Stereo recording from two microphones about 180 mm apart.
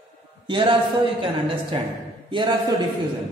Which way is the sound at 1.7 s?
30° right (ahead or behind).